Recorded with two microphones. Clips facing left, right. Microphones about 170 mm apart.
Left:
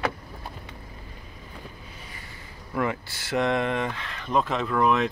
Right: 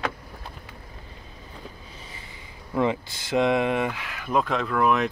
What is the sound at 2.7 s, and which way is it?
Speech, 20° right (ahead or behind).